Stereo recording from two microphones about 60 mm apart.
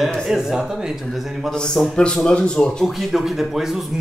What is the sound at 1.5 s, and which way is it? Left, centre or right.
Speech, centre.